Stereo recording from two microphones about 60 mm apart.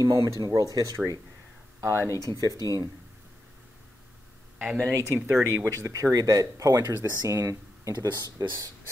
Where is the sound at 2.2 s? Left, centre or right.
Right.